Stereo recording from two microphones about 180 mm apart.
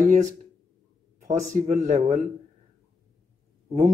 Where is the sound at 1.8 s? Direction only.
45° right (ahead or behind).